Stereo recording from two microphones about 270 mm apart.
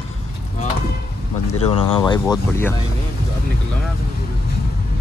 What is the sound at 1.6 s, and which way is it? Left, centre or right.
Speech, left.